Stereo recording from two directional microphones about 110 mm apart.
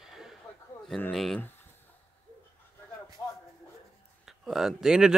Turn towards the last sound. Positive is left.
turn(degrees=-5)  # may be behind; listen again after turning